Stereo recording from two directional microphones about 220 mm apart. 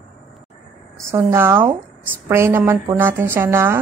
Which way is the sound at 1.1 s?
10° right (ahead or behind).